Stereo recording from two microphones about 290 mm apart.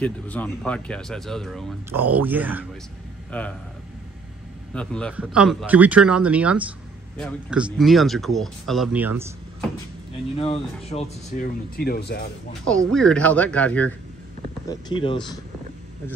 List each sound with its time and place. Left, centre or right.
0.0 s speech: centre
3.3 s a man's voice: centre
4.7 s speech: centre
10.4 s speech: left
12.6 s speech: centre
14.7 s speech: centre